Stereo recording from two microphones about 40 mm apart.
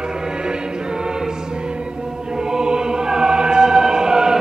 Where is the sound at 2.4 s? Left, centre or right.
Centre.